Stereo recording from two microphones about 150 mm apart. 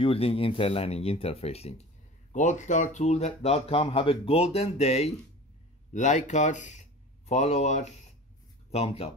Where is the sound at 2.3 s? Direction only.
55° left (ahead or behind).